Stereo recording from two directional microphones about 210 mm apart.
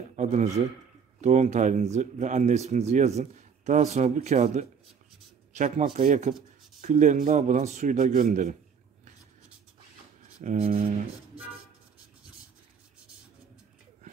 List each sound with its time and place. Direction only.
0.1 s speech: 35° right (ahead or behind)
6.3 s a sound: centre (ahead or behind)
6.8 s speech: 35° right (ahead or behind)
10.4 s speech: 30° right (ahead or behind)